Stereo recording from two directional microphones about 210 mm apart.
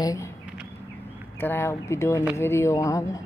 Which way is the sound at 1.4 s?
10° left (ahead or behind).